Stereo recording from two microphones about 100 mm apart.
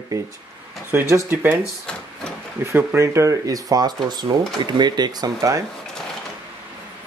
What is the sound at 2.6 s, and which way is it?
Speech, 25° right (ahead or behind).